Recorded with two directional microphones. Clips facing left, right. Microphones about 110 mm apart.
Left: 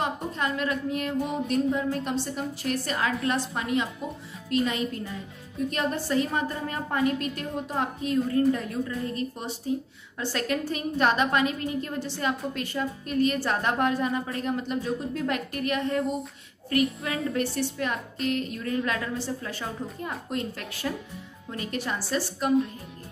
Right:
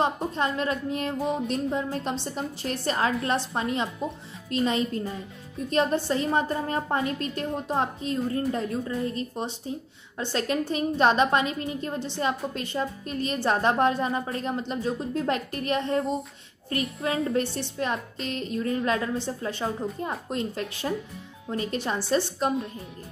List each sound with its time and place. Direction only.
0.0 s a woman's voice: 30° right (ahead or behind)